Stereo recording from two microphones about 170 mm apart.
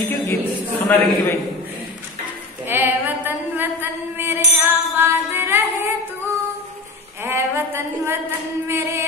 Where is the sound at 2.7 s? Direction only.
10° right (ahead or behind).